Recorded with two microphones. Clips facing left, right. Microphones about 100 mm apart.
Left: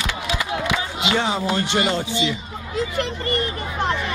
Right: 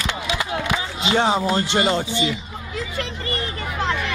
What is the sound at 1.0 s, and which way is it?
Speech, 30° right (ahead or behind).